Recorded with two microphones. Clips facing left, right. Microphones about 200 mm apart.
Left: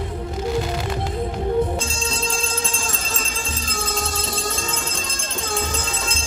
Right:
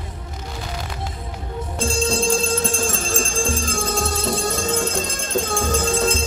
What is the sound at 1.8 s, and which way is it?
Music, 65° right (ahead or behind).